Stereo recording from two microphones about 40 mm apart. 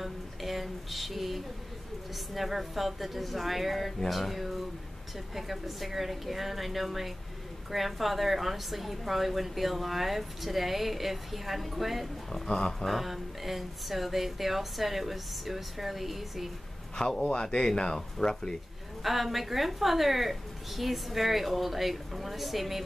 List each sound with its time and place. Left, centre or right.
0.0 s a sound: centre
2.3 s a woman's voice: centre
12.3 s speech: centre
12.8 s a woman's voice: centre
17.2 s speech: left
17.9 s speech: centre
19.0 s a woman's voice: centre